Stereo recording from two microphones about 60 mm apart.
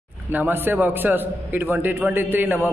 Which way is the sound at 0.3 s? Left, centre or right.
Right.